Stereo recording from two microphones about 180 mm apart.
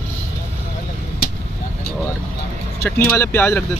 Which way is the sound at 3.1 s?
10° left (ahead or behind).